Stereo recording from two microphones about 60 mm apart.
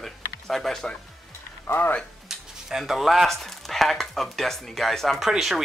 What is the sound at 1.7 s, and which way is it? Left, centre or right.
Speech, left.